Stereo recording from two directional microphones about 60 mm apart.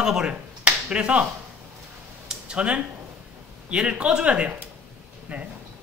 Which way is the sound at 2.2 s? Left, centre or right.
Centre.